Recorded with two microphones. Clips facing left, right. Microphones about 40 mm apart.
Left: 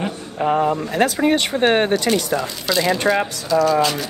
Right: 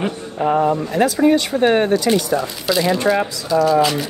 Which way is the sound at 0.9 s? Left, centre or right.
Left.